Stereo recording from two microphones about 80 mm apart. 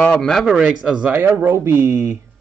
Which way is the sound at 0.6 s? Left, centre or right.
Centre.